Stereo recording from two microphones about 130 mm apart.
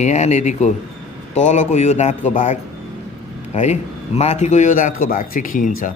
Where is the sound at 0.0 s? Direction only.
60° left (ahead or behind).